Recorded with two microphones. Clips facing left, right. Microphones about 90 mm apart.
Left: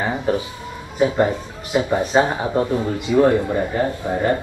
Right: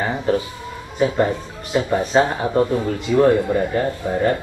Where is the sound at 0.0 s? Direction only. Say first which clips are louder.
Right 1 dB; 15° left (ahead or behind).